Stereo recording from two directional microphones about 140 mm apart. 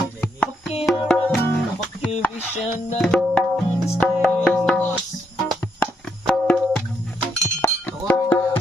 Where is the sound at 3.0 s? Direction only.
5° left (ahead or behind).